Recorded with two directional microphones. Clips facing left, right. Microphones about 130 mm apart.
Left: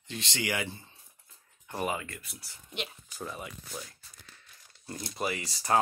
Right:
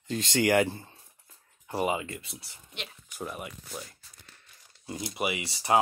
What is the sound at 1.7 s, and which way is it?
Speech, 20° right (ahead or behind).